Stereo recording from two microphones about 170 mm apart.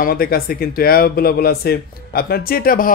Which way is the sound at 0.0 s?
60° left (ahead or behind).